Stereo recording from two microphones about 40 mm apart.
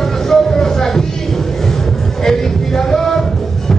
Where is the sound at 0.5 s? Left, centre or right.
Centre.